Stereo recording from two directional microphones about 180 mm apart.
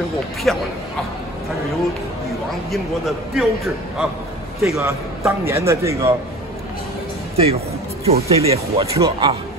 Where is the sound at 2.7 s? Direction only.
Centre (ahead or behind).